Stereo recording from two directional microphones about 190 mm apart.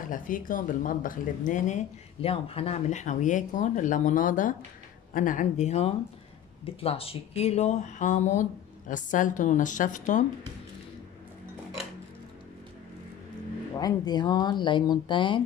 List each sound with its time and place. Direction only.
0.1 s speech: 45° left (ahead or behind)
2.2 s speech: 30° left (ahead or behind)
13.7 s speech: 20° left (ahead or behind)